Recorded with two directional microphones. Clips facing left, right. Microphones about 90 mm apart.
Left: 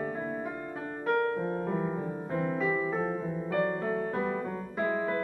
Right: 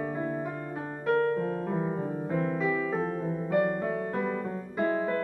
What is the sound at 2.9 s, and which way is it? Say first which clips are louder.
Music: right 1 dB; 15° left (ahead or behind).